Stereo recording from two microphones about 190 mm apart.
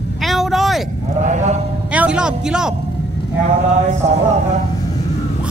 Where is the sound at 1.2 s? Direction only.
40° right (ahead or behind).